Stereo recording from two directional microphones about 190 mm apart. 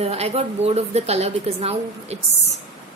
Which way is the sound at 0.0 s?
35° right (ahead or behind).